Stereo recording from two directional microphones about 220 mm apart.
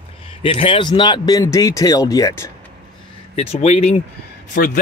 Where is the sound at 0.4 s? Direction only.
25° left (ahead or behind).